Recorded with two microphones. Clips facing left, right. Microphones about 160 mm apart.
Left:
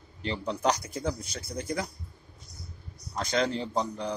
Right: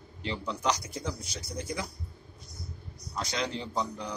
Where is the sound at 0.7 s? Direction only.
55° left (ahead or behind).